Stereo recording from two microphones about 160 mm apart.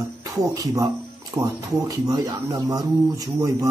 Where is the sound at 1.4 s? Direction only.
25° right (ahead or behind).